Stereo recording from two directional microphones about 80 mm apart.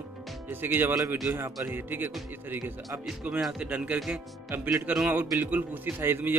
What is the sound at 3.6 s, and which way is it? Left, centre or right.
Speech, centre.